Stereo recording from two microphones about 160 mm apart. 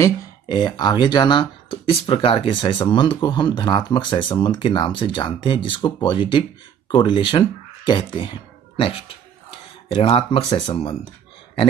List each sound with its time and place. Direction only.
0.5 s speech: 25° left (ahead or behind)